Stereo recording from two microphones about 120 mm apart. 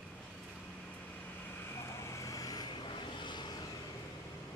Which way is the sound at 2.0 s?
25° left (ahead or behind).